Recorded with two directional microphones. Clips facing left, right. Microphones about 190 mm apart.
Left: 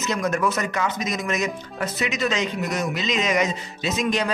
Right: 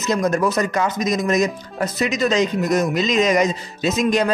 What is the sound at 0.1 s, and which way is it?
Speech, 35° right (ahead or behind).